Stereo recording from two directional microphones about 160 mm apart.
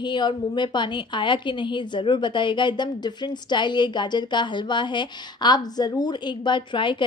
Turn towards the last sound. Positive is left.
turn(degrees=30)  # may be behind; listen again after turning